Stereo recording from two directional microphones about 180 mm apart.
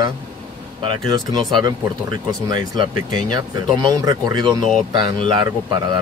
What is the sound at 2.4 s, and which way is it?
Speech, 25° right (ahead or behind).